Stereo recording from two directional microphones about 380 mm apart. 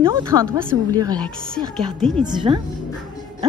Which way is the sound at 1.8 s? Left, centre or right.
Centre.